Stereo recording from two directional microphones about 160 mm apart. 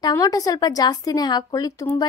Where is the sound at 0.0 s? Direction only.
20° left (ahead or behind).